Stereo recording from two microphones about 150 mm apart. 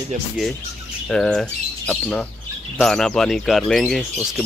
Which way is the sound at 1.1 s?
5° left (ahead or behind).